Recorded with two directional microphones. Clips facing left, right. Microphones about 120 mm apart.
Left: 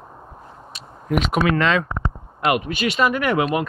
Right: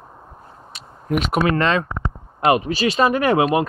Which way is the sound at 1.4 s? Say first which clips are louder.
Even; 40° right (ahead or behind).